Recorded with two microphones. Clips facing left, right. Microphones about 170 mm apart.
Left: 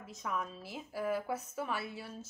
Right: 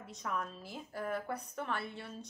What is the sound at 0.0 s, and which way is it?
A woman's voice, centre (ahead or behind).